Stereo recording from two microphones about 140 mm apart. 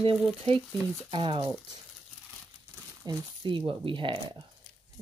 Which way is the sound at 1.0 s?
35° right (ahead or behind).